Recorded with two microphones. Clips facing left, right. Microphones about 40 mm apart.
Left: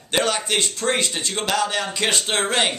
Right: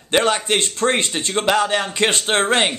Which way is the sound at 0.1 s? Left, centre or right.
Right.